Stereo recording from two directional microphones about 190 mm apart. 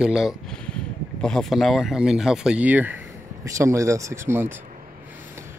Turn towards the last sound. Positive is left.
turn(degrees=-10)  # may be behind; listen again after turning